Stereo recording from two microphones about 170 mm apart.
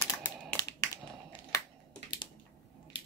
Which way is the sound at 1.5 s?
20° left (ahead or behind).